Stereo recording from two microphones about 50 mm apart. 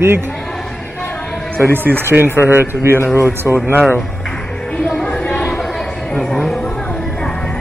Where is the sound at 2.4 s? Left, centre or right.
Right.